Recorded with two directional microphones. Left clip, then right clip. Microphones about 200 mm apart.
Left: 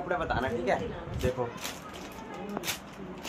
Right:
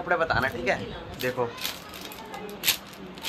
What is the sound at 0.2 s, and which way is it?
Speech, 10° right (ahead or behind).